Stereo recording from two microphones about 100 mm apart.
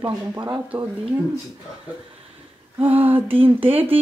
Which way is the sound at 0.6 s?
15° right (ahead or behind).